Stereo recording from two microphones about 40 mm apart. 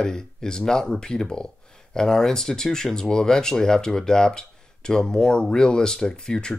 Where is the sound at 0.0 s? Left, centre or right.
Centre.